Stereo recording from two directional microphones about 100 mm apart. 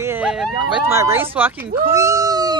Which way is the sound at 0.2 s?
10° right (ahead or behind).